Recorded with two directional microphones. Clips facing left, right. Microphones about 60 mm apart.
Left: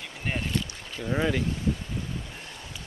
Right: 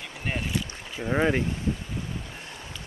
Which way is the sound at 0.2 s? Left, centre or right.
Centre.